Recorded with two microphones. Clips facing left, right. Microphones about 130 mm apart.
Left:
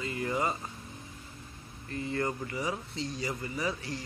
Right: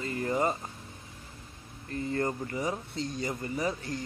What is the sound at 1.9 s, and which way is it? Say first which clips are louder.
A man's voice: right 2 dB; 40° right (ahead or behind).